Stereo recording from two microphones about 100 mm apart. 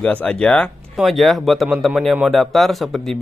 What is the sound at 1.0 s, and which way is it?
Speech, centre (ahead or behind).